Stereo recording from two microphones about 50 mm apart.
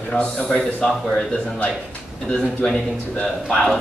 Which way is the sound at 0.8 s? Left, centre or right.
Centre.